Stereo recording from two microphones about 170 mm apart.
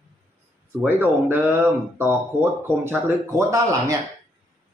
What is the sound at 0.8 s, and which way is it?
Speech, 10° right (ahead or behind).